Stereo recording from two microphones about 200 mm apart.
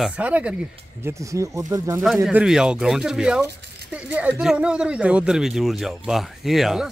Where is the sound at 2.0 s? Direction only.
5° right (ahead or behind).